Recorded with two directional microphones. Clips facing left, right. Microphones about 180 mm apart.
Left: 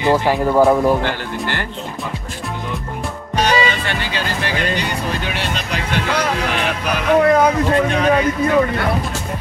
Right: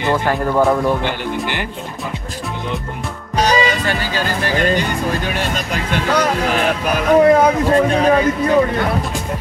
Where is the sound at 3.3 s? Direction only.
40° right (ahead or behind).